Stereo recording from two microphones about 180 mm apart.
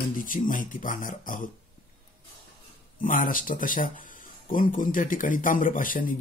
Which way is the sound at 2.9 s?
50° left (ahead or behind).